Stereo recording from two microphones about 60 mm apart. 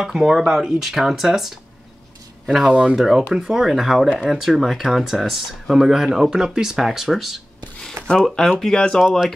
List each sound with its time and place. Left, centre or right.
0.0 s speech: centre
8.1 s speech: centre